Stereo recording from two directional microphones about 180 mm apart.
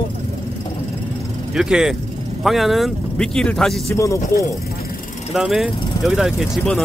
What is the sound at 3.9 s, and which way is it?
Speech, 15° left (ahead or behind).